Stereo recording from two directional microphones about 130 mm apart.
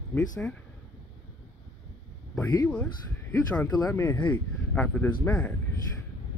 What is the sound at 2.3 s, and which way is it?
Speech, 15° left (ahead or behind).